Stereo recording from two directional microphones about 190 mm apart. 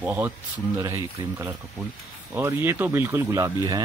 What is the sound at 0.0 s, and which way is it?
Speech, 10° right (ahead or behind).